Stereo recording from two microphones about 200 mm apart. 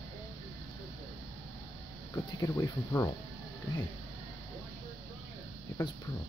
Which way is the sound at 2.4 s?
15° left (ahead or behind).